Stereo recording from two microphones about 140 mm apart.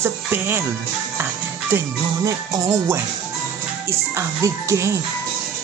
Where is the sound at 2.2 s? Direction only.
20° right (ahead or behind).